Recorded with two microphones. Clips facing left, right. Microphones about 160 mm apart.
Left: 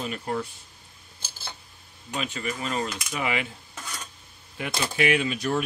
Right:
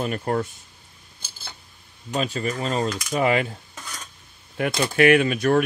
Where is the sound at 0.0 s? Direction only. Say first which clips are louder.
Right 6 dB; 50° right (ahead or behind).